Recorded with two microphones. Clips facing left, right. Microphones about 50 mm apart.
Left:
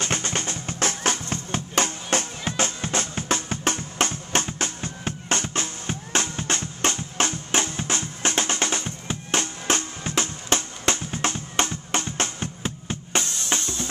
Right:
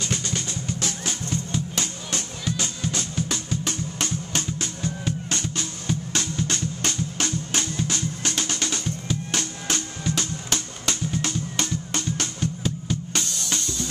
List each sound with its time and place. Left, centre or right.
0.0 s music: left